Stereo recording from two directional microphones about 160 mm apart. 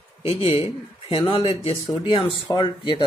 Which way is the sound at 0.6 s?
30° left (ahead or behind).